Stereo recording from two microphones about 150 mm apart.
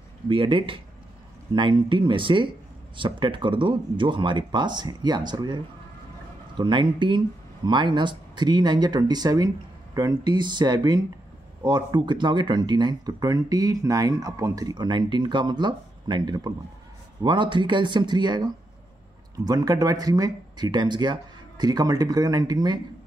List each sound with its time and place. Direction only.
0.3 s speech: 35° right (ahead or behind)